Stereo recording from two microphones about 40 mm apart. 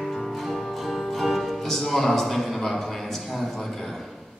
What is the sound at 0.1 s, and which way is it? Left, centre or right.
Music, centre.